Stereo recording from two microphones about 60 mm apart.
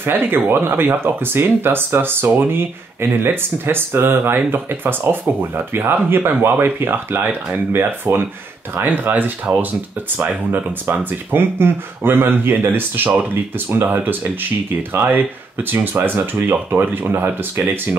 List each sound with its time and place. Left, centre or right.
0.0 s speech: right